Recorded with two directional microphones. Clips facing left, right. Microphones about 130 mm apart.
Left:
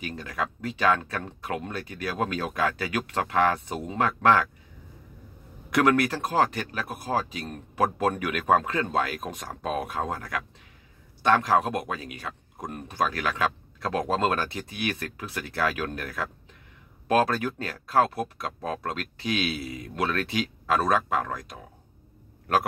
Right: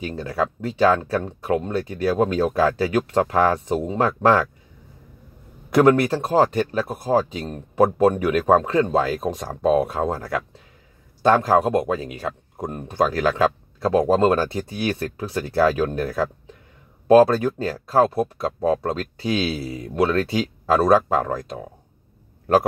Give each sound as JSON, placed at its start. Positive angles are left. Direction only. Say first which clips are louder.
{"t": 0.0, "sound": "speech", "louder": "right 7 dB", "side_deg": -30}
{"t": 5.7, "sound": "speech", "louder": "right 7 dB", "side_deg": -30}